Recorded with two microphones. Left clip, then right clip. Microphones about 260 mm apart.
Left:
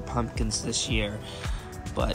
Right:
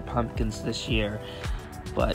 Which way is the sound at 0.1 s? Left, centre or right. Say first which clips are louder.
Right 1 dB; centre.